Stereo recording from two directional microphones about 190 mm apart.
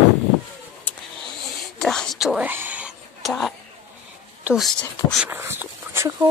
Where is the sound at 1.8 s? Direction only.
Centre (ahead or behind).